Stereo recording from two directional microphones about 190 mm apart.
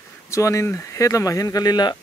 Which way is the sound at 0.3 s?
15° left (ahead or behind).